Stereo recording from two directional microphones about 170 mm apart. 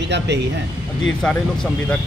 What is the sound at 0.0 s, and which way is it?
Speech, 90° right.